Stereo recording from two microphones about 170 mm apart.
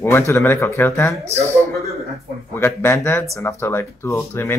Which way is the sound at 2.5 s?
15° left (ahead or behind).